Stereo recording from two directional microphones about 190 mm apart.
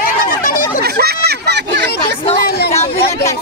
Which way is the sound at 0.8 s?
55° right (ahead or behind).